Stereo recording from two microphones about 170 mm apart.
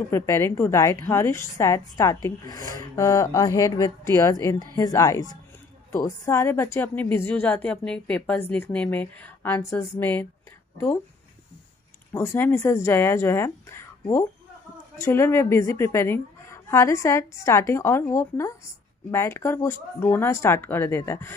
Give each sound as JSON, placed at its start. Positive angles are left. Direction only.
{"t": 0.1, "sound": "a woman's voice", "side_deg": 15}
{"t": 12.1, "sound": "a woman's voice", "side_deg": 15}